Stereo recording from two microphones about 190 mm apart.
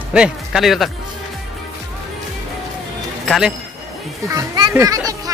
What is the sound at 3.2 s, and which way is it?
Speech, centre (ahead or behind).